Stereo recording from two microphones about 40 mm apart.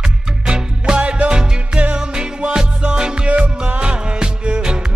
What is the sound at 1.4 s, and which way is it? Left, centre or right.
Music, centre.